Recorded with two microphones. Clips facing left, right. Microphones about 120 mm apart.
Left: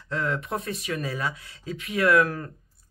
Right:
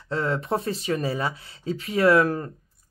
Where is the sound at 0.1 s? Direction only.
30° right (ahead or behind).